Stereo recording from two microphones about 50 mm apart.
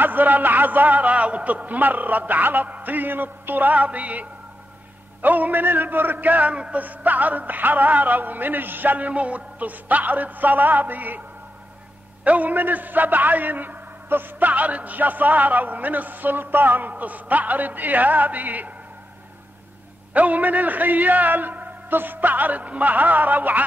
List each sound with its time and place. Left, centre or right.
0.0 s a man's voice: right
12.3 s a man's voice: right
20.2 s a man's voice: right